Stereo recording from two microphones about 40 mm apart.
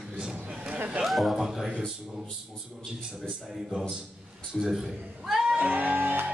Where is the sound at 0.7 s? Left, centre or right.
Right.